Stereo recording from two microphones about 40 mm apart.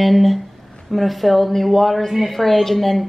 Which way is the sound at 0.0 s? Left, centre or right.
Centre.